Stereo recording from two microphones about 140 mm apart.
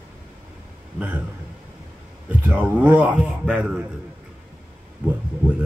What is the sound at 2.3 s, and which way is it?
Speech, 10° right (ahead or behind).